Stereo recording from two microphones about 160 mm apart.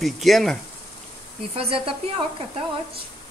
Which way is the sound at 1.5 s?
35° right (ahead or behind).